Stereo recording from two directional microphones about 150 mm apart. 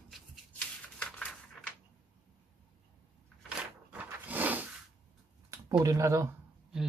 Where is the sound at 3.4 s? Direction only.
10° right (ahead or behind).